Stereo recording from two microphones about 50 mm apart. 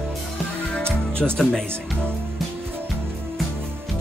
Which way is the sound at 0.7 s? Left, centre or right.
Left.